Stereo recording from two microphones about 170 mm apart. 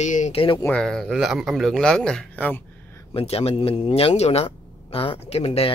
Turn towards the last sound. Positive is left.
turn(degrees=35)  # may be behind; listen again after turning